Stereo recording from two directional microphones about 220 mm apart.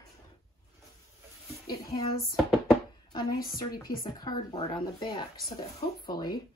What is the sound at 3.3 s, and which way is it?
Speech, 40° left (ahead or behind).